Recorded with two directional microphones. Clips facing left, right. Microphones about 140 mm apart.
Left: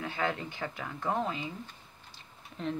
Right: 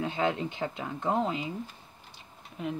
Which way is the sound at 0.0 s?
20° right (ahead or behind).